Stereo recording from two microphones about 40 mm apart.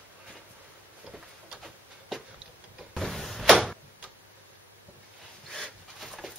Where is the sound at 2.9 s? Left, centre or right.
Centre.